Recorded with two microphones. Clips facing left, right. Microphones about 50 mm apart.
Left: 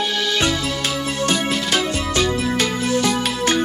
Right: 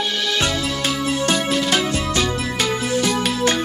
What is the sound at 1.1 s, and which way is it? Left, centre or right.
Music, centre.